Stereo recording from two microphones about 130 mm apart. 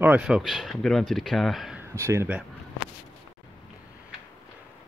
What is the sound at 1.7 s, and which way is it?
Speech, 20° right (ahead or behind).